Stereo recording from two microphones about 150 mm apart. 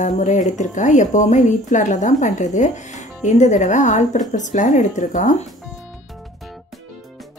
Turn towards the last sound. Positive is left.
turn(degrees=55)  # may be behind; listen again after turning